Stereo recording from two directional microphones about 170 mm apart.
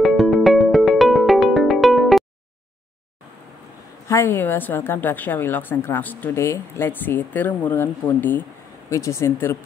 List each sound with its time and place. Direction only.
0.0 s music: centre (ahead or behind)
4.1 s a woman's voice: 15° left (ahead or behind)